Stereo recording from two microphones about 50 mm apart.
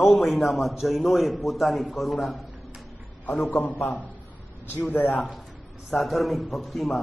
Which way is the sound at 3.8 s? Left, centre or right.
Left.